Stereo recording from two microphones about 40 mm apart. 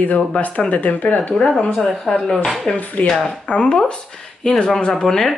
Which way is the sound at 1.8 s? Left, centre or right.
Centre.